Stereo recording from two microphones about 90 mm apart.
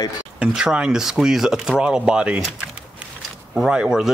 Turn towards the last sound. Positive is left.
turn(degrees=-5)  # may be behind; listen again after turning